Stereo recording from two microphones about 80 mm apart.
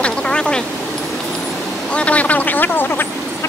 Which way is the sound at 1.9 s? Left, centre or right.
Centre.